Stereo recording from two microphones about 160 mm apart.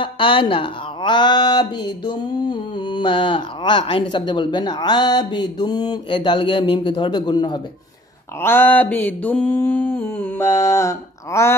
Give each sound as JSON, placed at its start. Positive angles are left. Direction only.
{"t": 0.0, "sound": "speech", "side_deg": 30}
{"t": 8.4, "sound": "mantra", "side_deg": 15}